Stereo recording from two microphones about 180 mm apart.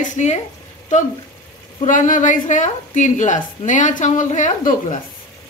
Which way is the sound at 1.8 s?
45° left (ahead or behind).